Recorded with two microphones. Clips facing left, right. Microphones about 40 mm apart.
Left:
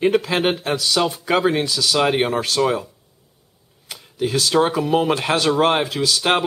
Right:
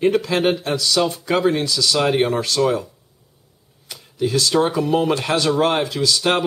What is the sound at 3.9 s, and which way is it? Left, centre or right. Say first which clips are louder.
Speech: right 1 dB; centre.